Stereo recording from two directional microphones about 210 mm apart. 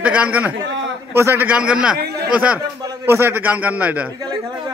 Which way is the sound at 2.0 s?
50° right (ahead or behind).